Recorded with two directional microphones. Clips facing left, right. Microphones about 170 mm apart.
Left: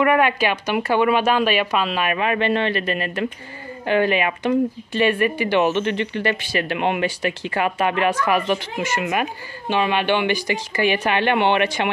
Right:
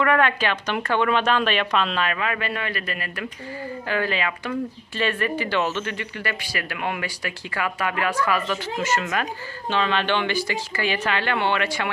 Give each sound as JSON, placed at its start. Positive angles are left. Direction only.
{"t": 0.0, "sound": "speech", "side_deg": 15}
{"t": 2.0, "sound": "speech", "side_deg": 20}